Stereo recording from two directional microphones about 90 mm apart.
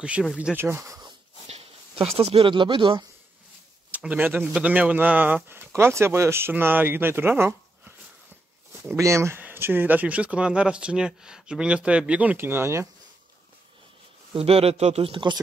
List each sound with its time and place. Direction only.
0.2 s speech: centre (ahead or behind)
0.6 s speech: 25° right (ahead or behind)
1.6 s speech: 90° right; by 3.0 s 70° right (ahead or behind)
3.9 s speech: 15° right (ahead or behind)
8.9 s speech: 35° right (ahead or behind)
14.3 s speech: 90° right; by 15.4 s 60° right (ahead or behind)